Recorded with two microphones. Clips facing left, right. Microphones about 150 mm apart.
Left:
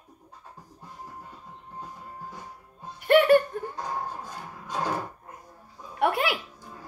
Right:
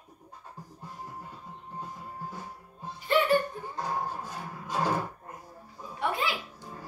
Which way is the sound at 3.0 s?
70° left (ahead or behind).